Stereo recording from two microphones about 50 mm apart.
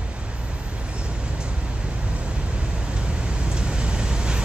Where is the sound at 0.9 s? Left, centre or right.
Right.